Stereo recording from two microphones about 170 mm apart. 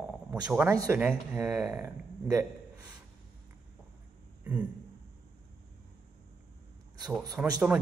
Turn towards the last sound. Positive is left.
turn(degrees=-5)  # may be behind; listen again after turning